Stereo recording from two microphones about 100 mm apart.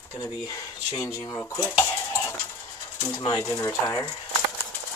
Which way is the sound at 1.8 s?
30° left (ahead or behind).